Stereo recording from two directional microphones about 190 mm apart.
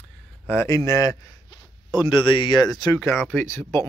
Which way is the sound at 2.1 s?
25° left (ahead or behind).